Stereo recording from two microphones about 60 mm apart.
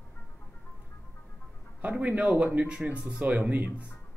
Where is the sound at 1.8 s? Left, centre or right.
Right.